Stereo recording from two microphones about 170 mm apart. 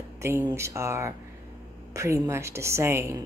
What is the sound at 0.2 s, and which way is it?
Speech, 15° right (ahead or behind).